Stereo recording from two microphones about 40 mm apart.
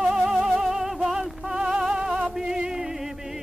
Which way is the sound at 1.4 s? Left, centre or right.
Centre.